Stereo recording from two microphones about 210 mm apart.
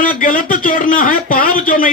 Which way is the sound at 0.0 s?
40° left (ahead or behind).